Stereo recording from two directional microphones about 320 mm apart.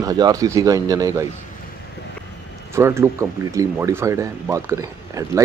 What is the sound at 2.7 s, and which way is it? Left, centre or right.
A man's voice, centre.